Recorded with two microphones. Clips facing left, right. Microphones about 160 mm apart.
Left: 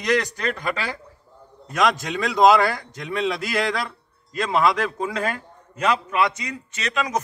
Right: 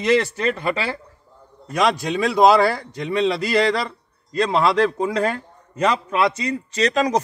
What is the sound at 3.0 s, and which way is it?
Speech, centre (ahead or behind).